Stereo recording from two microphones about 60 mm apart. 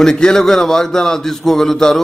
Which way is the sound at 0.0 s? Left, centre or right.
Centre.